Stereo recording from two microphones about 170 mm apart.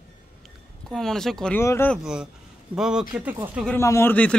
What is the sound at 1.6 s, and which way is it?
Speech, 15° left (ahead or behind).